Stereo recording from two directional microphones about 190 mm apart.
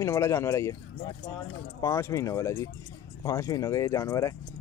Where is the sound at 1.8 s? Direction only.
15° left (ahead or behind).